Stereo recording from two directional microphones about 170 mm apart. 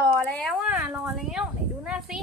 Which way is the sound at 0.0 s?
10° left (ahead or behind).